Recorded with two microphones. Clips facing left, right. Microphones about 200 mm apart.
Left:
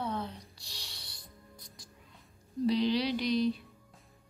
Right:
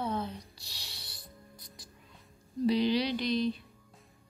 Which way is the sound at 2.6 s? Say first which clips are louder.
Right 1 dB; 5° right (ahead or behind).